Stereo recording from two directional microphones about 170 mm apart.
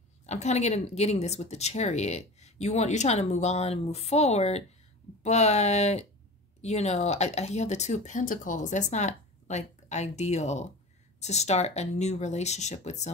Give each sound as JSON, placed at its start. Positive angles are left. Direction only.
{"t": 0.3, "sound": "speech", "side_deg": 40}